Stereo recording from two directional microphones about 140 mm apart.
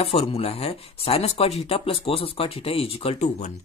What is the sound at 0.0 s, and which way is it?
Speech, 50° left (ahead or behind).